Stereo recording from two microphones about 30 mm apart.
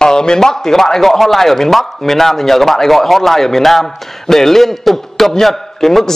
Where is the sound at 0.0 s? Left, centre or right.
Left.